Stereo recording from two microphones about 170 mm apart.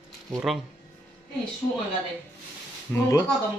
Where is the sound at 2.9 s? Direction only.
15° left (ahead or behind).